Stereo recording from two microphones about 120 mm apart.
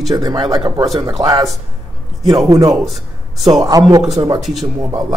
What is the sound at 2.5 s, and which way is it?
Speech, 30° right (ahead or behind).